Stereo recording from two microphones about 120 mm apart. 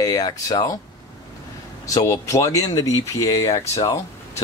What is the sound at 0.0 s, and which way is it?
Speech, 30° left (ahead or behind).